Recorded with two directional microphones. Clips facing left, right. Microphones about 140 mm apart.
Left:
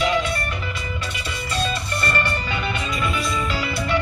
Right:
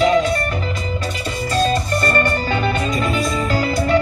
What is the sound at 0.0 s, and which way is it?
Music, 40° right (ahead or behind).